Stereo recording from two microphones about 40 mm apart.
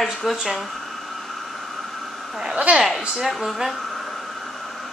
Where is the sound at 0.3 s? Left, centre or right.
Centre.